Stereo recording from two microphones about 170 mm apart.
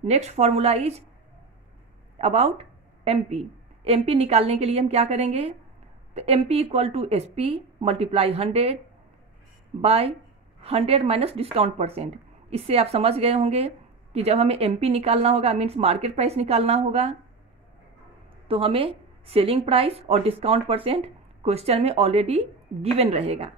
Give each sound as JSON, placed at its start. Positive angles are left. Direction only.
{"t": 0.0, "sound": "speech", "side_deg": -40}
{"t": 2.1, "sound": "speech", "side_deg": -35}
{"t": 9.8, "sound": "speech", "side_deg": -35}
{"t": 18.5, "sound": "speech", "side_deg": -35}